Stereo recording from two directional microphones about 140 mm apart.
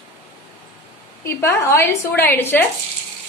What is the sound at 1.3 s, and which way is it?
A woman's voice, 15° left (ahead or behind).